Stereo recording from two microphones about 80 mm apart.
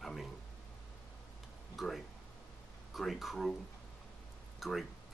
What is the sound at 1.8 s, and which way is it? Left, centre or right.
Speech, centre.